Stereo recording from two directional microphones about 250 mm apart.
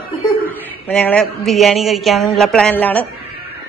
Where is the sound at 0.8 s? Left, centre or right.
Centre.